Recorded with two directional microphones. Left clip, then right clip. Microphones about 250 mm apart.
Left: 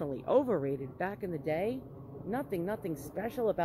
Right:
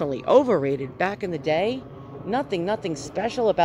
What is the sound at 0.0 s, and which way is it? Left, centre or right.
Speech, centre.